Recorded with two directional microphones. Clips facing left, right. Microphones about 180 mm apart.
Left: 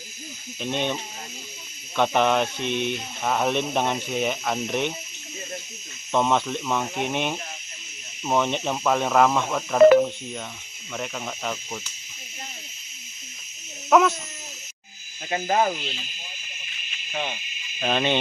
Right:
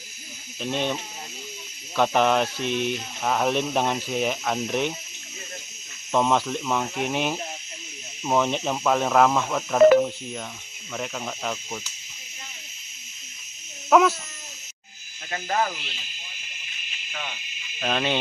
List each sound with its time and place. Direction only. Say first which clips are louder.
0.6 s speech: even; centre (ahead or behind)
2.0 s speech: even; centre (ahead or behind)
6.1 s speech: even; centre (ahead or behind)
13.8 s a sound: even; centre (ahead or behind)
15.2 s speech: left 4 dB; 20° left (ahead or behind)
17.1 s speech: left 6 dB; 25° left (ahead or behind)
17.7 s speech: left 2 dB; centre (ahead or behind)